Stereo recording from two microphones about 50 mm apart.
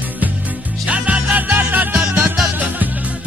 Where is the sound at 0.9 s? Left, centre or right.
Right.